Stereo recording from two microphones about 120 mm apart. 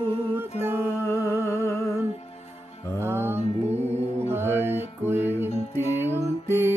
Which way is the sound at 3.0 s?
20° right (ahead or behind).